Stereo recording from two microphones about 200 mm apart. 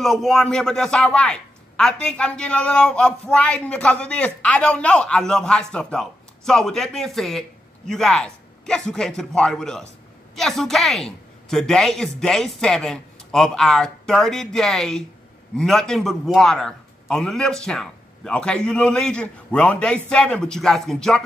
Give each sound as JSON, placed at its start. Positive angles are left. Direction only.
{"t": 0.0, "sound": "a man's voice", "side_deg": 0}